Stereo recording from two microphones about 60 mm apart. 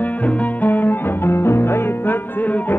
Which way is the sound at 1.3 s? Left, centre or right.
Left.